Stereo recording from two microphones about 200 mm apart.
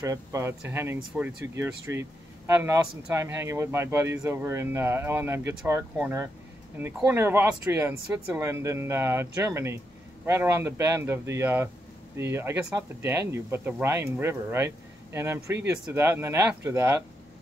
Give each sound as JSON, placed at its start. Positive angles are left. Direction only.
{"t": 0.0, "sound": "speech", "side_deg": -15}